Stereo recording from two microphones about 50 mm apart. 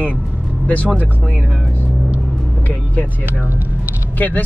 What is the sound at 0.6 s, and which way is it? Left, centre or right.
Speech, left.